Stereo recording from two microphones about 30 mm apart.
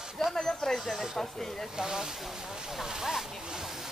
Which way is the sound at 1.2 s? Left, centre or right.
Centre.